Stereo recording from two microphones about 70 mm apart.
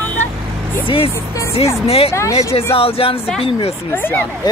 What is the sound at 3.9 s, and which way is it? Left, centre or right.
Speech, left.